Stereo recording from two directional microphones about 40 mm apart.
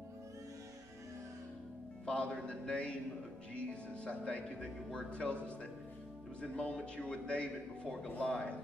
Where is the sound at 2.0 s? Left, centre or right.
Left.